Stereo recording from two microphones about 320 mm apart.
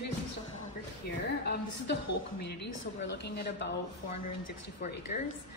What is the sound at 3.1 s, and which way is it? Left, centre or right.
Speech, left.